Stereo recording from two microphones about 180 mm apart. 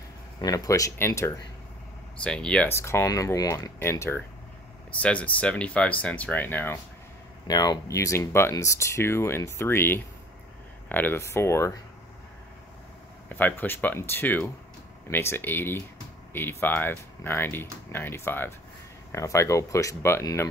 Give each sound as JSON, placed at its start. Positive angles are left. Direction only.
{"t": 0.4, "sound": "speech", "side_deg": 20}
{"t": 13.3, "sound": "speech", "side_deg": 10}